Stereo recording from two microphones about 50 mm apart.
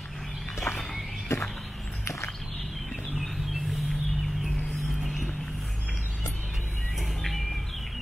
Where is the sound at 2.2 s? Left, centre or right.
Centre.